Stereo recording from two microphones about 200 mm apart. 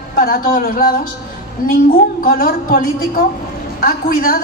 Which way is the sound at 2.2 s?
45° left (ahead or behind).